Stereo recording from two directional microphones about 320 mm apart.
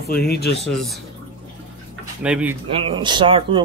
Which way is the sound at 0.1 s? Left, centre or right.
Left.